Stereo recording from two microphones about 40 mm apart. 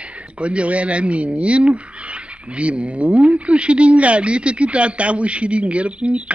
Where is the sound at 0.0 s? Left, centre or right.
Right.